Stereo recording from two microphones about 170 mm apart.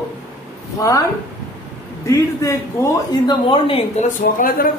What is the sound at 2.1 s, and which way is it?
A man's voice, 20° left (ahead or behind).